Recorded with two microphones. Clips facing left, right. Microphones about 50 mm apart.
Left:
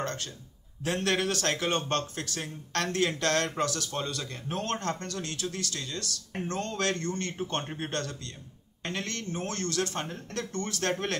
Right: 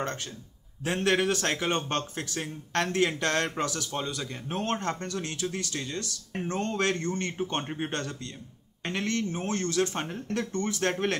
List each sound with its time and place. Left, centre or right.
0.0 s a man's voice: right